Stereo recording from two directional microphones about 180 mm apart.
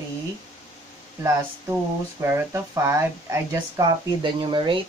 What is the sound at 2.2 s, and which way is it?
Speech, 15° right (ahead or behind).